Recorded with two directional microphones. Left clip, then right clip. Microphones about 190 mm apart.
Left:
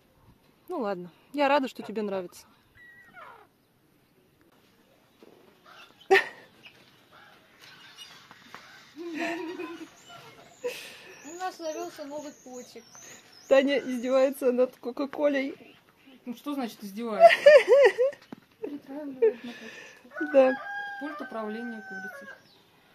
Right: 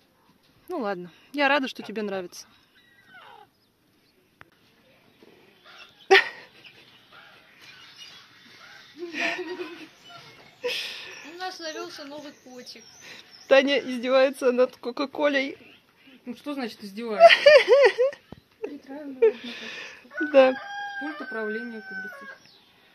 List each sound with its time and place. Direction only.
0.7 s speech: centre (ahead or behind)
6.0 s dog: centre (ahead or behind)
9.1 s a sound: centre (ahead or behind)
10.6 s a sound: centre (ahead or behind)
13.5 s speech: centre (ahead or behind)
16.3 s speech: 45° left (ahead or behind)
17.2 s speech: centre (ahead or behind)
21.0 s speech: 50° left (ahead or behind)